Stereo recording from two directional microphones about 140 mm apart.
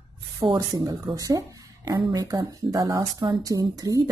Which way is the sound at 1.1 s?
25° right (ahead or behind).